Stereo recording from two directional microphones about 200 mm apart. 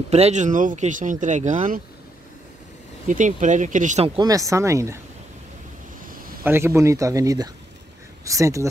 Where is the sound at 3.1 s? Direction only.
40° right (ahead or behind); by 4.9 s 15° right (ahead or behind).